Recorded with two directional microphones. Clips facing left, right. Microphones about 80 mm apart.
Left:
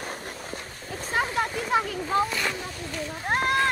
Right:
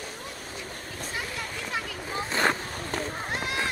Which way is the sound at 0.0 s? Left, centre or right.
Left.